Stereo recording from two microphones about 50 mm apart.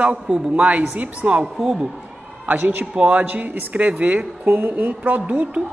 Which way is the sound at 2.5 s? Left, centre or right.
Right.